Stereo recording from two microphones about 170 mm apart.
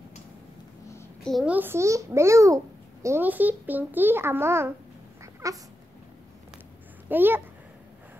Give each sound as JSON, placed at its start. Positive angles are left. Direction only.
{"t": 1.2, "sound": "a child's voice", "side_deg": 0}
{"t": 5.2, "sound": "cat", "side_deg": -20}
{"t": 7.1, "sound": "a child's voice", "side_deg": -10}